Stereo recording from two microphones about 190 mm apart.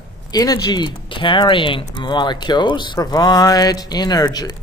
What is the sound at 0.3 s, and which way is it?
Speech, 20° left (ahead or behind).